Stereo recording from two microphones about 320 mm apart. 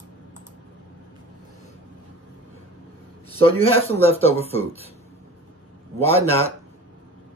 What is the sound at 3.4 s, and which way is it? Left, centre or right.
Speech, centre.